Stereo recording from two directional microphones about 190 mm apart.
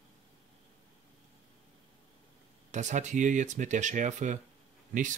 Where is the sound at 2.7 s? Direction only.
40° right (ahead or behind).